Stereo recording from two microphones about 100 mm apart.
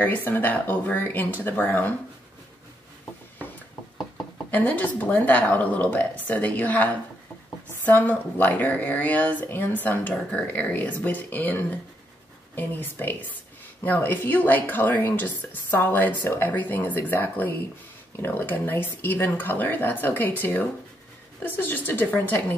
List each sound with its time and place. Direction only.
0.0 s speech: 20° left (ahead or behind)
4.5 s speech: 15° left (ahead or behind)